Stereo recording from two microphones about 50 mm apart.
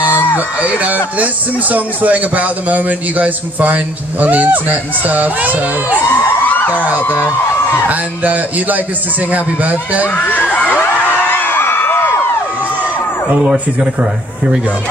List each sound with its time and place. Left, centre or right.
0.1 s music: left
0.8 s speech: right
6.5 s a sound: left
7.9 s speech: right
10.1 s crowd: left
11.1 s a sound: left